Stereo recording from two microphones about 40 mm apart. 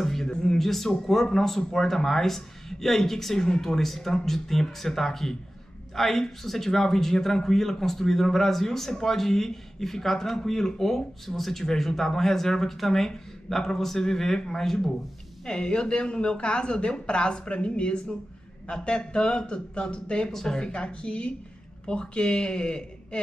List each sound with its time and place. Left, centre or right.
0.0 s a sound: centre
0.6 s speech: centre
15.4 s a woman's voice: centre
20.2 s a woman's voice: centre